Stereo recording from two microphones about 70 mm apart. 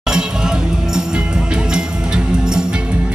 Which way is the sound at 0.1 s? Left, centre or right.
Centre.